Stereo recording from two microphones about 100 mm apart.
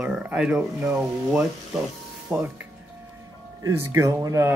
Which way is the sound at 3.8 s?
30° right (ahead or behind).